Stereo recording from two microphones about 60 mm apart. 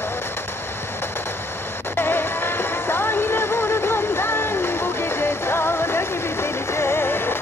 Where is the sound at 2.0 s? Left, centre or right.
Left.